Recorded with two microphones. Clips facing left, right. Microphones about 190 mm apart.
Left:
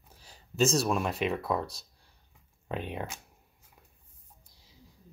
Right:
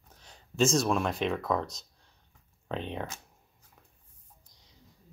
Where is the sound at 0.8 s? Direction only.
5° left (ahead or behind).